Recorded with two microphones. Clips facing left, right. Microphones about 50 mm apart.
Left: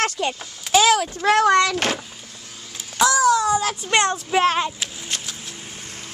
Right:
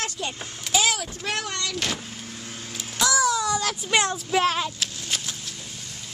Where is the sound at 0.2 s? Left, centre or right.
Left.